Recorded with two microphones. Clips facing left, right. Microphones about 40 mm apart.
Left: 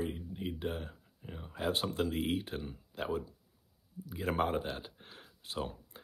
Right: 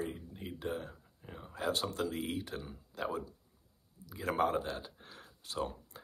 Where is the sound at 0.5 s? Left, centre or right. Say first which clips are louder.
Right 4 dB; left.